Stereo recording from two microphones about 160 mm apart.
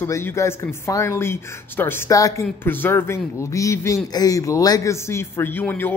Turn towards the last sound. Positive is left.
turn(degrees=10)  # may be behind; listen again after turning